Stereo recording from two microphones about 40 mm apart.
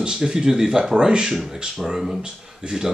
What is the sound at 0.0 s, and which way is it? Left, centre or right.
Speech, right.